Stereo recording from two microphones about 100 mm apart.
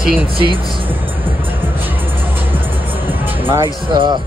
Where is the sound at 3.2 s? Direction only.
20° right (ahead or behind).